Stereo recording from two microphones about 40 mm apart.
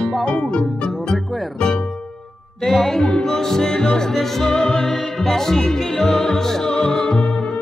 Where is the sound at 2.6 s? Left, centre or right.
Centre.